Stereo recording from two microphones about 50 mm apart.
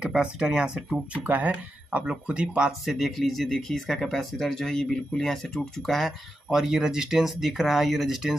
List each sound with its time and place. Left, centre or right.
0.0 s speech: centre
1.1 s speech: right
2.8 s speech: centre
5.9 s speech: centre